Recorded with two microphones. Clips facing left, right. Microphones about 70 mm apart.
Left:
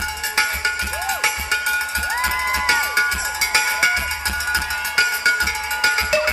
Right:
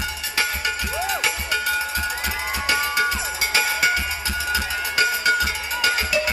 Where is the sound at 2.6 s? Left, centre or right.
Left.